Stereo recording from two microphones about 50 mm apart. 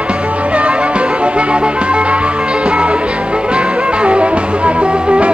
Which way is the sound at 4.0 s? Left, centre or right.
Right.